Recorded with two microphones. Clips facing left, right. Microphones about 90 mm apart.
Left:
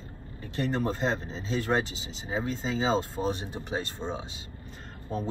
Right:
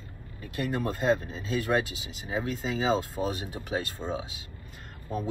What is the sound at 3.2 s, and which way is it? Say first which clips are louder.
Speech: left 1 dB; 15° right (ahead or behind).